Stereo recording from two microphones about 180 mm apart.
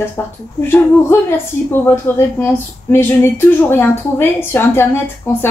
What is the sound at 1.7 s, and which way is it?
Speech, 10° left (ahead or behind).